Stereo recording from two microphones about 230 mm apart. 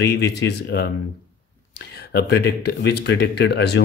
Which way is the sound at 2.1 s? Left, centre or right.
Left.